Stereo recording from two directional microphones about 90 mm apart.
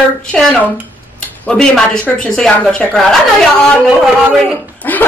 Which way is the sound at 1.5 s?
10° left (ahead or behind).